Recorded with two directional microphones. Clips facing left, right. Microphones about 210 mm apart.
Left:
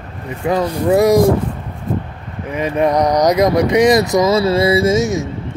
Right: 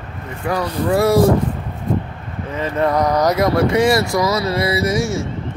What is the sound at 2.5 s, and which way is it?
Speech, 15° left (ahead or behind).